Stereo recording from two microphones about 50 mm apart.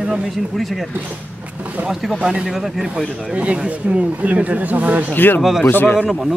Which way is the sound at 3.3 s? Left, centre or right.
Right.